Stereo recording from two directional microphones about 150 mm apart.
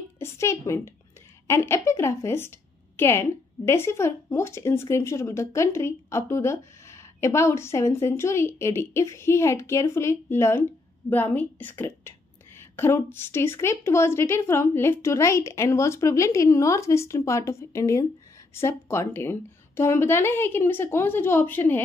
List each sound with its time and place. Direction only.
0.2 s a woman's voice: 20° left (ahead or behind)